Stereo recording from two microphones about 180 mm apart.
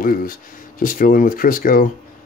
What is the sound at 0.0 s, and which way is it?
Speech, 50° left (ahead or behind).